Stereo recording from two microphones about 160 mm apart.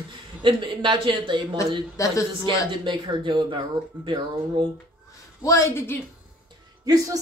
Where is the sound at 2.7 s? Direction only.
30° right (ahead or behind).